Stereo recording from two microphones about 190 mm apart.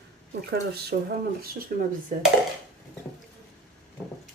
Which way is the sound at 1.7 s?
45° right (ahead or behind).